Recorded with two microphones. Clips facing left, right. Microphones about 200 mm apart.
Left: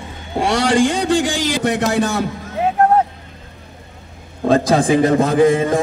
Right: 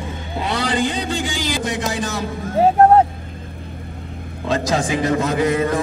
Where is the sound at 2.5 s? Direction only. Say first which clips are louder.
Right 4 dB; 35° right (ahead or behind).